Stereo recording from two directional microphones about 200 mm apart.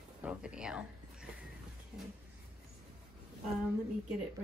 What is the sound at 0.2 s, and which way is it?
Speech, 5° right (ahead or behind).